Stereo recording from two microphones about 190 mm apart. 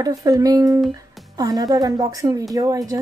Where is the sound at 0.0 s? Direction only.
20° right (ahead or behind).